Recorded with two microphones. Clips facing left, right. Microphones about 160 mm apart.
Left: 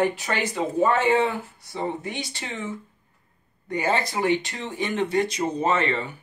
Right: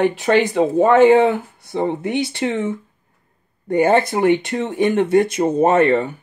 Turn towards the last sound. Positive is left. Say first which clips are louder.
# right 9 dB
turn(degrees=-55)  # may be behind; listen again after turning